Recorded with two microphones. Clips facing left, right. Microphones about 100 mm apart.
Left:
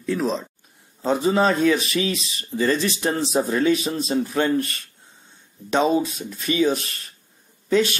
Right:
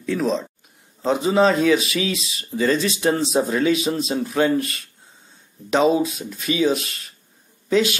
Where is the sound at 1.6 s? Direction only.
30° left (ahead or behind).